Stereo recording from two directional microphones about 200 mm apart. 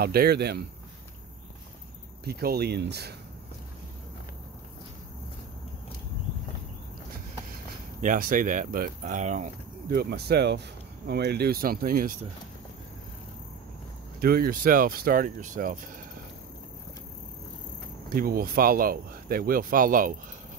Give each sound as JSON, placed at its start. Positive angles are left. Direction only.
{"t": 0.0, "sound": "speech", "side_deg": -50}
{"t": 2.2, "sound": "speech", "side_deg": -50}
{"t": 8.0, "sound": "speech", "side_deg": -45}
{"t": 14.2, "sound": "speech", "side_deg": -50}
{"t": 18.1, "sound": "speech", "side_deg": -45}